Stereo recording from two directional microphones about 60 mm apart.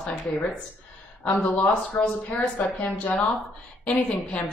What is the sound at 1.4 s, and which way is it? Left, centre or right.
Speech, left.